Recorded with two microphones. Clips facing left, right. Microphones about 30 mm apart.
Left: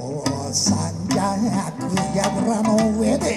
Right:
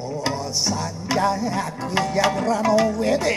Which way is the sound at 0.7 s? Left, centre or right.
Centre.